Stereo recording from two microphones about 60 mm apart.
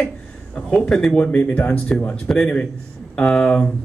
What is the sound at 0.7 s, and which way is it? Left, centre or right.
Speech, centre.